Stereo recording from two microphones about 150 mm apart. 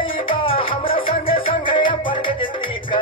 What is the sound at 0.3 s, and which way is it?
Music, 35° left (ahead or behind).